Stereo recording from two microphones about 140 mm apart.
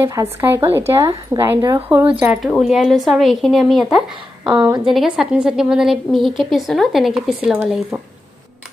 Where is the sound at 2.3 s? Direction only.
Centre (ahead or behind).